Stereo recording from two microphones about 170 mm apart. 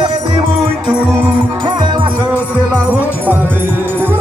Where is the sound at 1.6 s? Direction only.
25° right (ahead or behind).